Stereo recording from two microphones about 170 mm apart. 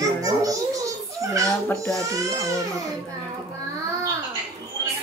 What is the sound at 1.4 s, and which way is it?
Speech, 5° left (ahead or behind).